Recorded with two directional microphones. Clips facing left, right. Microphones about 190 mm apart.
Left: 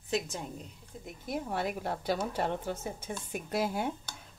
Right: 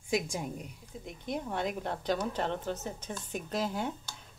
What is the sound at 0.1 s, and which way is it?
Speech, 10° right (ahead or behind).